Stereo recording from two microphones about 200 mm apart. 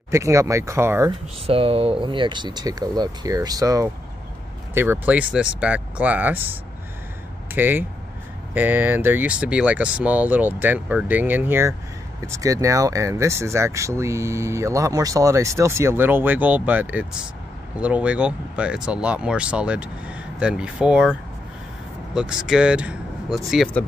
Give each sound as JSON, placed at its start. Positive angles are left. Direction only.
{"t": 0.1, "sound": "speech", "side_deg": -15}
{"t": 1.5, "sound": "speech", "side_deg": -30}
{"t": 7.5, "sound": "speech", "side_deg": -10}